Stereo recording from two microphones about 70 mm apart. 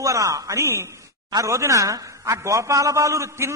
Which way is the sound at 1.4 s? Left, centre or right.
Right.